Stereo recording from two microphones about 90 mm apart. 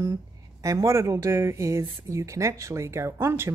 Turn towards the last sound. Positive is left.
turn(degrees=-30)  # may be behind; listen again after turning